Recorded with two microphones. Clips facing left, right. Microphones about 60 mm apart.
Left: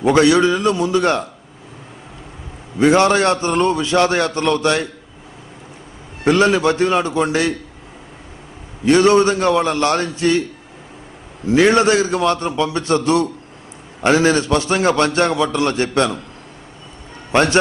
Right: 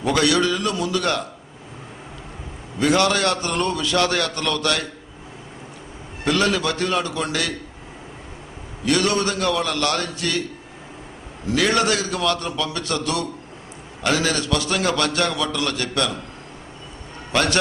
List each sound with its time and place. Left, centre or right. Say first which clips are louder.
0.0 s a man's voice: left 6 dB; left
2.8 s a man's voice: left 6 dB; left
6.2 s a man's voice: left 7 dB; left
8.8 s a man's voice: left 8 dB; left
11.4 s a man's voice: left 7 dB; left
17.3 s a man's voice: left 6 dB; left